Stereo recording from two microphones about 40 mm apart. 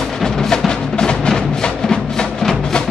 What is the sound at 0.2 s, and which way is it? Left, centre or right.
Music, centre.